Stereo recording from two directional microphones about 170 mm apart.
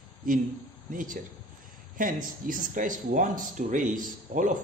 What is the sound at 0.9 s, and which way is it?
Speech, 50° right (ahead or behind).